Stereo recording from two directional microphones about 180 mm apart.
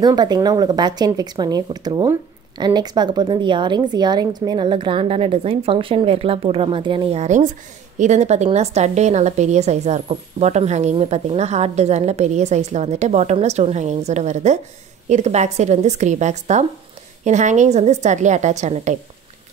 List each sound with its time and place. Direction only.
0.0 s a woman's voice: 25° right (ahead or behind); by 18.9 s 40° right (ahead or behind)